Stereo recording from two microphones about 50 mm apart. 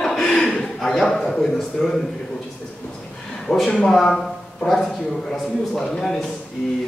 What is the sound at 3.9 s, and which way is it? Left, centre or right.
A man's voice, centre.